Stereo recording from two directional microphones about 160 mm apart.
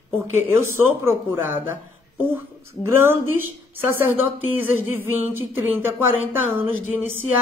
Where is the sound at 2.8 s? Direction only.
15° right (ahead or behind).